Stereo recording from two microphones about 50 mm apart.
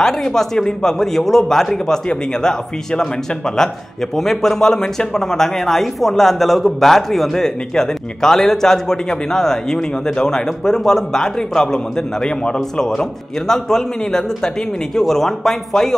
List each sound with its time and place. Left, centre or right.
0.0 s speech: centre
4.2 s speech: centre